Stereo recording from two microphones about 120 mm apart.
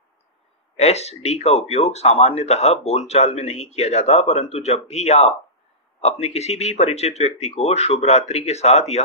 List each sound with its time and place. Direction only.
0.7 s speech: 65° left (ahead or behind)